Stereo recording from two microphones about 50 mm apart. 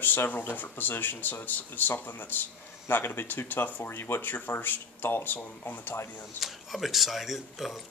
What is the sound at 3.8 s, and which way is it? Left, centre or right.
Speech, left.